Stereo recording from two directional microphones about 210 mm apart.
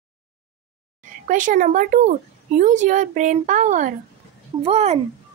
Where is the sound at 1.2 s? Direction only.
40° right (ahead or behind).